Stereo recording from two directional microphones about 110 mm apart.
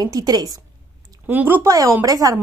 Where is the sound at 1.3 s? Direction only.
15° right (ahead or behind).